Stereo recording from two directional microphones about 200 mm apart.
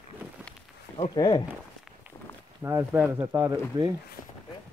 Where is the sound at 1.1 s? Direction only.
20° left (ahead or behind).